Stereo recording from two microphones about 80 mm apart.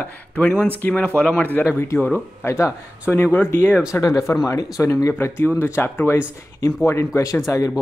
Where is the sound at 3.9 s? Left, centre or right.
Left.